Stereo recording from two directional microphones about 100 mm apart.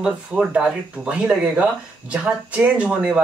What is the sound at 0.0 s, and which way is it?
Speech, 10° right (ahead or behind).